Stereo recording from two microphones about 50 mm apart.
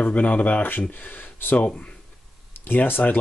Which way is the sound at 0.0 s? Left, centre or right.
Left.